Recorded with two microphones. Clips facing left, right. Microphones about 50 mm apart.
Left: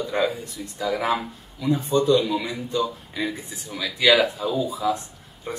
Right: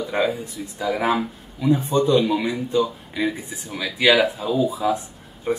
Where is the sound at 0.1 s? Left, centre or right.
Centre.